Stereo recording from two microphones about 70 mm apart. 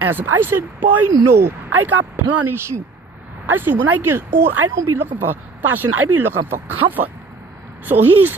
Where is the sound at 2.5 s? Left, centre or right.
Right.